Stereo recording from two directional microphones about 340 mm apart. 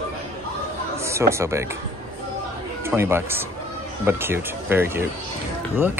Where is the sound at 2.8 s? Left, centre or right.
Centre.